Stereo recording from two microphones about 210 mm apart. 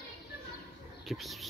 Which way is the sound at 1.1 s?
Centre (ahead or behind).